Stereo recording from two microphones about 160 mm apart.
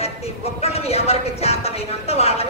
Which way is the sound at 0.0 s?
40° left (ahead or behind).